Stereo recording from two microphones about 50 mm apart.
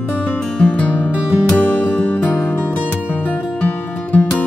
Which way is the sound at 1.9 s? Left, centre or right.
Left.